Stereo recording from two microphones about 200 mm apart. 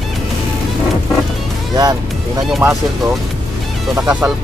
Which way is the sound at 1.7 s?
20° right (ahead or behind).